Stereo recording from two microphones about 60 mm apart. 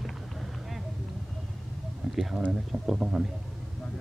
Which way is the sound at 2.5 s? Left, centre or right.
Centre.